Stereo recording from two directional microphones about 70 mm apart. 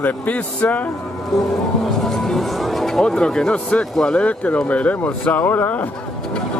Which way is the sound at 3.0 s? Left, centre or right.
Centre.